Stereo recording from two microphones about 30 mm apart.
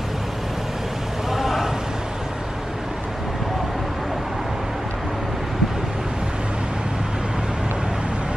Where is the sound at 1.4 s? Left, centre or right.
Centre.